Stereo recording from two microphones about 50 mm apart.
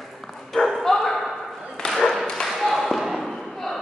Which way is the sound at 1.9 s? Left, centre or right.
Centre.